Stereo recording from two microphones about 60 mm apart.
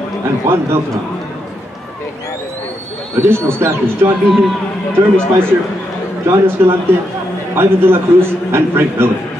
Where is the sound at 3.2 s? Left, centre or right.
Right.